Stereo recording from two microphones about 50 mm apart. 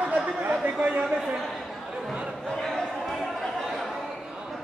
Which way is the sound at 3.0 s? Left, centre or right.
Centre.